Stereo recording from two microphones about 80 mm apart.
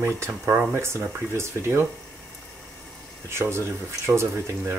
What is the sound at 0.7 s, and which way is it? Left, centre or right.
Speech, right.